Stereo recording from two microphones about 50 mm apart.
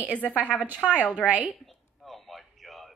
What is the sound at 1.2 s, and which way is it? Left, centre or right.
Speech, right.